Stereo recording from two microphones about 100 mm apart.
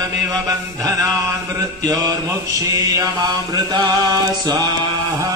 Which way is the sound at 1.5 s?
35° right (ahead or behind).